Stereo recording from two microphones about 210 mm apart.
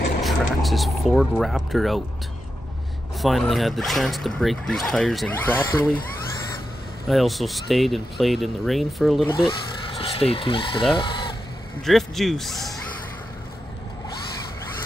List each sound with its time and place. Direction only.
0.2 s speech: centre (ahead or behind)
3.2 s speech: centre (ahead or behind)
7.1 s speech: centre (ahead or behind)
9.3 s speech: 25° left (ahead or behind)
11.0 s fowl: 20° left (ahead or behind)
11.8 s speech: centre (ahead or behind)